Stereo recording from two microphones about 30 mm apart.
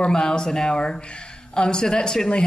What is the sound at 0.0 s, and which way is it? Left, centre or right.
Speech, left.